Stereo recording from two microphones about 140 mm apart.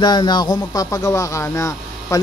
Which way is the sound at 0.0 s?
30° left (ahead or behind).